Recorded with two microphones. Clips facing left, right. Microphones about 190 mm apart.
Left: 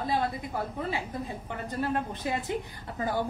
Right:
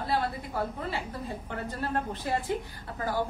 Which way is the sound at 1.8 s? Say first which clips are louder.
Left 3 dB; 15° left (ahead or behind).